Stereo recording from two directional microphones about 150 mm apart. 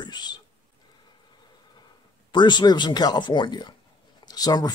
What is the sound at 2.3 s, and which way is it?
Speech, 30° left (ahead or behind).